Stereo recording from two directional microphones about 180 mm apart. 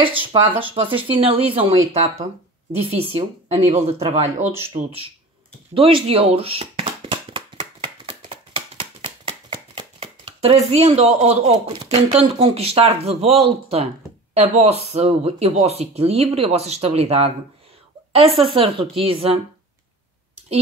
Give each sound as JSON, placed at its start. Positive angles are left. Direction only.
{"t": 0.0, "sound": "speech", "side_deg": -30}
{"t": 2.8, "sound": "speech", "side_deg": -35}
{"t": 5.8, "sound": "a sound", "side_deg": -30}
{"t": 11.9, "sound": "speech", "side_deg": -35}
{"t": 18.4, "sound": "speech", "side_deg": -30}